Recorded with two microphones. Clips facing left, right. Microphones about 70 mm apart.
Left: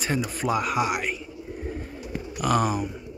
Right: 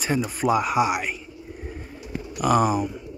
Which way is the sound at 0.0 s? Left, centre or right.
Centre.